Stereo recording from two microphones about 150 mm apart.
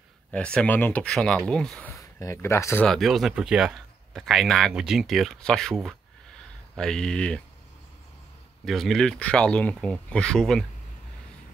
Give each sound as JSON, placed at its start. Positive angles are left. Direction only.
{"t": 0.3, "sound": "speech", "side_deg": 5}
{"t": 2.0, "sound": "speech", "side_deg": 20}
{"t": 2.9, "sound": "speech", "side_deg": 0}
{"t": 8.6, "sound": "speech", "side_deg": 0}